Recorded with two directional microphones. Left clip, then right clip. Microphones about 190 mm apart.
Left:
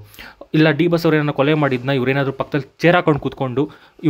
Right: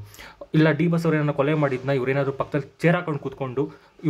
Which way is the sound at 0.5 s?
35° left (ahead or behind).